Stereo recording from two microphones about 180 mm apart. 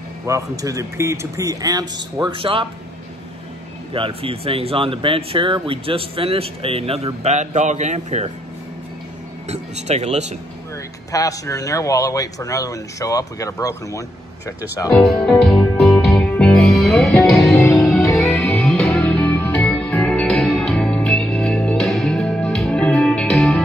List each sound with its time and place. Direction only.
0.3 s a man's voice: 15° right (ahead or behind)
3.9 s speech: 30° right (ahead or behind)
9.5 s speech: 40° right (ahead or behind)
11.1 s speech: 20° left (ahead or behind)
14.9 s music: centre (ahead or behind)